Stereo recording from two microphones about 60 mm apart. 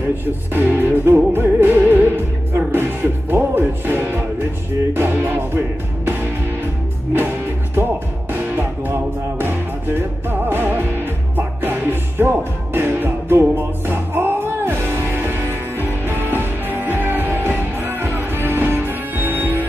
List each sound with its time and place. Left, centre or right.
0.2 s speech: right
1.0 s music: right
7.7 s music: right